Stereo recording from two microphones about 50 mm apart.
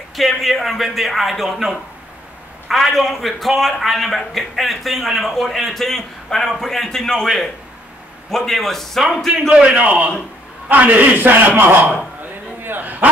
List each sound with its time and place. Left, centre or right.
0.1 s a man's voice: centre
2.7 s a man's voice: centre
8.3 s a man's voice: centre
9.8 s a man's voice: right
12.2 s bow-wow: right